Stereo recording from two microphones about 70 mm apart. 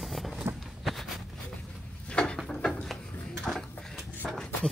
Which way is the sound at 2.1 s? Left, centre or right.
Centre.